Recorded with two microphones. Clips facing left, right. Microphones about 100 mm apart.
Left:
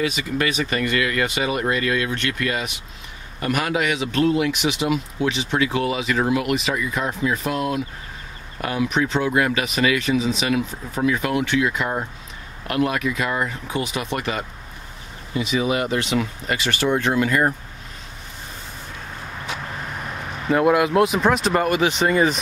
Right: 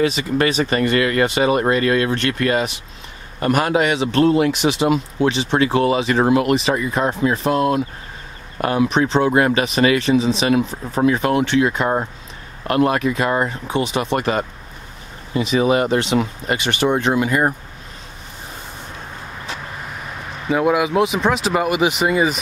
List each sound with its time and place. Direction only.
0.0 s speech: 30° right (ahead or behind)
14.1 s speech: 40° right (ahead or behind); by 17.6 s 20° right (ahead or behind)
20.4 s speech: centre (ahead or behind)